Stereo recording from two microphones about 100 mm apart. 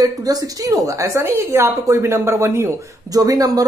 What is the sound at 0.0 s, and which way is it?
A woman's voice, 35° right (ahead or behind).